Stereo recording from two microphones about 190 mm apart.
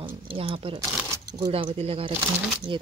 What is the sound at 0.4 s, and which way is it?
Speech, 30° right (ahead or behind).